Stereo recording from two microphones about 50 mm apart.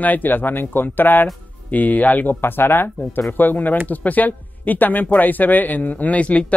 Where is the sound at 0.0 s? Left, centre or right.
Left.